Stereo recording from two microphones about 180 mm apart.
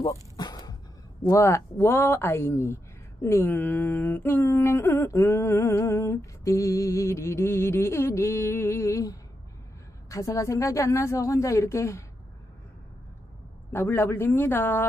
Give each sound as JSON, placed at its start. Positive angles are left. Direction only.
{"t": 0.0, "sound": "a sound", "side_deg": 20}
{"t": 1.3, "sound": "speech", "side_deg": 15}
{"t": 13.7, "sound": "speech", "side_deg": 10}